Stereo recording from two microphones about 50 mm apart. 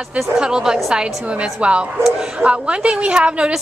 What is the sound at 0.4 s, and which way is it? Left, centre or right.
A woman's voice, centre.